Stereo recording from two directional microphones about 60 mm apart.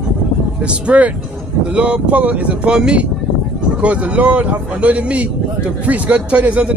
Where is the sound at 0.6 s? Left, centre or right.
Right.